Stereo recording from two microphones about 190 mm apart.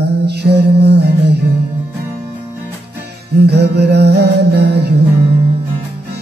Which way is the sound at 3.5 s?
60° right (ahead or behind).